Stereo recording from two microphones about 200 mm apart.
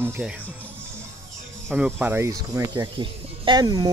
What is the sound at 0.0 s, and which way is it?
Speech, 10° right (ahead or behind).